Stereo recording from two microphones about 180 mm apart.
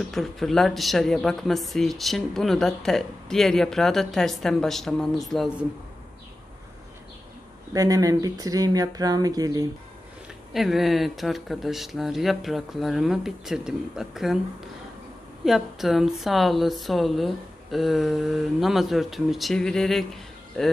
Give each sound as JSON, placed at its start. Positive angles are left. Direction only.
{"t": 0.1, "sound": "speech", "side_deg": 0}
{"t": 7.7, "sound": "speech", "side_deg": -20}
{"t": 10.5, "sound": "speech", "side_deg": 0}
{"t": 15.4, "sound": "speech", "side_deg": 0}